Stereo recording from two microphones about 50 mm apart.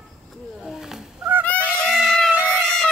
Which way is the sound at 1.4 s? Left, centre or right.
Left.